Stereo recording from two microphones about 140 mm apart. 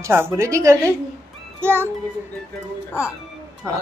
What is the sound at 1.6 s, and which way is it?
Child singing, 15° right (ahead or behind).